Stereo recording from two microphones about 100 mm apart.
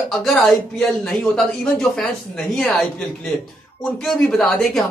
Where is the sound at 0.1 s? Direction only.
5° left (ahead or behind).